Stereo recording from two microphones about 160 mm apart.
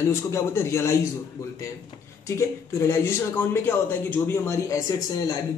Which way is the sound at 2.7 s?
15° left (ahead or behind).